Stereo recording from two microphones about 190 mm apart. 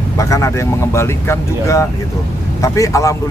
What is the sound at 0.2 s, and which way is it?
Speech, 15° left (ahead or behind).